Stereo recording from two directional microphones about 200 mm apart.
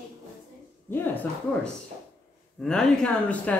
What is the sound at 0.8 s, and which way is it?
Speech, 10° left (ahead or behind).